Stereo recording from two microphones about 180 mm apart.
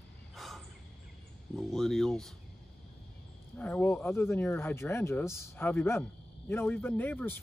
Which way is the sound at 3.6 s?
10° left (ahead or behind).